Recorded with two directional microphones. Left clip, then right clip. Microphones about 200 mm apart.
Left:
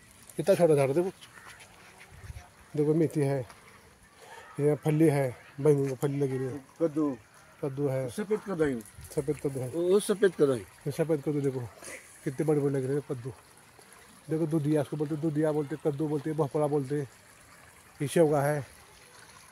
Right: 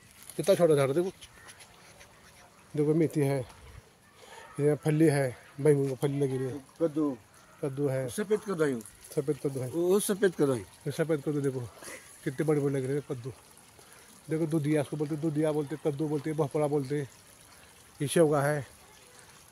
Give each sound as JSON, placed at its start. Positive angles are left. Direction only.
{"t": 0.4, "sound": "speech", "side_deg": 10}
{"t": 2.7, "sound": "speech", "side_deg": 5}
{"t": 4.6, "sound": "speech", "side_deg": 10}
{"t": 9.8, "sound": "speech", "side_deg": -40}
{"t": 10.9, "sound": "speech", "side_deg": 15}
{"t": 14.3, "sound": "speech", "side_deg": 15}